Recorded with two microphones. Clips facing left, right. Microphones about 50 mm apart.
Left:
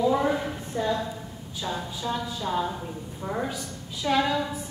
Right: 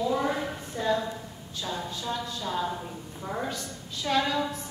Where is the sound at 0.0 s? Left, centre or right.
Centre.